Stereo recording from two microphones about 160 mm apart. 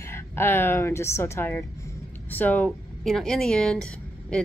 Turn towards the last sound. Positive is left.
turn(degrees=5)  # may be behind; listen again after turning